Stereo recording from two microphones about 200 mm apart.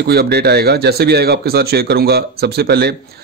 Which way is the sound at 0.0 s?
55° right (ahead or behind).